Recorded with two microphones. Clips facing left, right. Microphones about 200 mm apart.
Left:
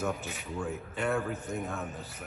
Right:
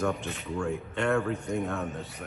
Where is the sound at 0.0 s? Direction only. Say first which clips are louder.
Right 4 dB; 5° left (ahead or behind).